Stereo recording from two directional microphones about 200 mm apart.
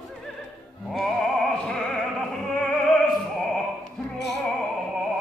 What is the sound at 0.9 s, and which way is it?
Opera, centre (ahead or behind).